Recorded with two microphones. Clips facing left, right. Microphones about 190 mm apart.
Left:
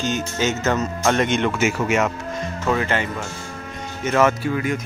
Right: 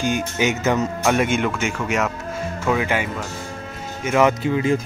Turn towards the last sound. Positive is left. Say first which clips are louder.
# right 3 dB
turn(degrees=-25)  # may be behind; listen again after turning